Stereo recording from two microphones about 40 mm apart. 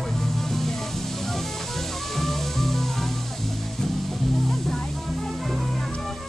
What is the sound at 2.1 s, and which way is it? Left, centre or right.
Music, centre.